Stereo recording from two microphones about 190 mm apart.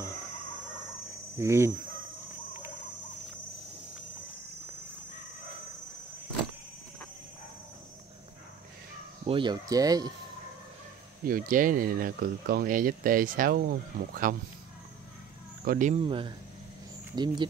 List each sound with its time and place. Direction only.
1.4 s fowl: 15° right (ahead or behind)
9.2 s speech: 25° right (ahead or behind)
11.2 s speech: 50° right (ahead or behind)
15.6 s speech: 50° right (ahead or behind)
15.9 s speech: 25° right (ahead or behind)